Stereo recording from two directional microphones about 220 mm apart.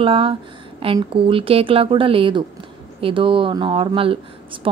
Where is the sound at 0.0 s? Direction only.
25° right (ahead or behind).